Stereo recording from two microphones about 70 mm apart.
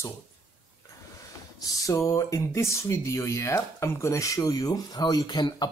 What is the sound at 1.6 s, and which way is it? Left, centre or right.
Speech, left.